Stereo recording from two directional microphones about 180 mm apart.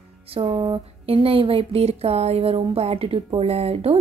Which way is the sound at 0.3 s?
30° right (ahead or behind).